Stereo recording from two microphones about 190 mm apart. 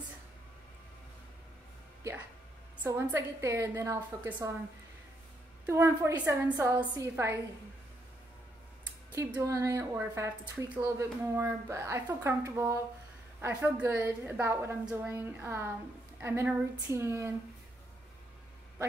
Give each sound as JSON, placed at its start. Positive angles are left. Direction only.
{"t": 2.8, "sound": "a woman's voice", "side_deg": -10}
{"t": 5.7, "sound": "a woman's voice", "side_deg": -15}
{"t": 9.1, "sound": "a woman's voice", "side_deg": -15}